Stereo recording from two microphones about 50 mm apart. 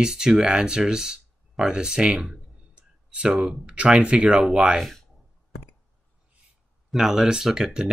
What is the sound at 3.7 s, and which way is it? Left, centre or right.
Speech, right.